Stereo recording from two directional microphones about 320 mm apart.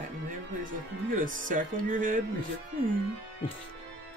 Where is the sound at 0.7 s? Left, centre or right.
Right.